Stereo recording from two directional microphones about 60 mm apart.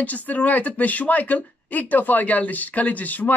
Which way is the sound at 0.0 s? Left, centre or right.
Left.